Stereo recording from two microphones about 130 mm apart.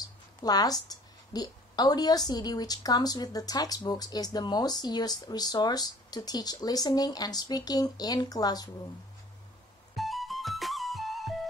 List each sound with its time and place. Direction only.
0.4 s a woman's voice: 30° left (ahead or behind)
9.9 s music: centre (ahead or behind)